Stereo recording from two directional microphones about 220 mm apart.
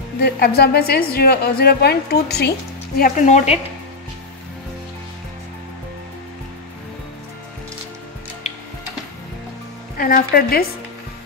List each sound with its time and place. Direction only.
0.2 s a woman's voice: 45° left (ahead or behind)
3.0 s speech: 35° left (ahead or behind)
9.9 s speech: 40° left (ahead or behind)